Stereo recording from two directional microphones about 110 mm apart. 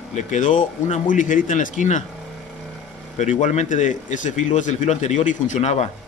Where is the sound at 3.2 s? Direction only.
90° left.